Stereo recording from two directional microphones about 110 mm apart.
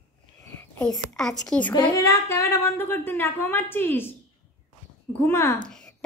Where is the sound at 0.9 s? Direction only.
5° left (ahead or behind).